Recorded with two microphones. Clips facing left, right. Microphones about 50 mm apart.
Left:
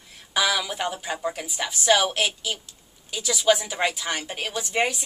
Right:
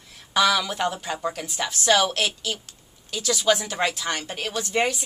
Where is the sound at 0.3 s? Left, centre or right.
Centre.